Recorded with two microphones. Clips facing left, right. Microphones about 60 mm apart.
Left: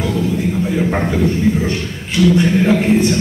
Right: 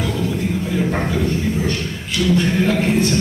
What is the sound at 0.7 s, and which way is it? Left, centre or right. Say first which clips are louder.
A man's voice: left 3 dB; centre.